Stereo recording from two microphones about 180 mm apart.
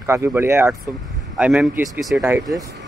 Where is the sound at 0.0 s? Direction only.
15° right (ahead or behind).